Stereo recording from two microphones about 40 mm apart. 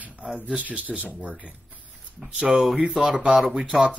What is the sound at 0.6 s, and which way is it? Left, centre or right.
Speech, right.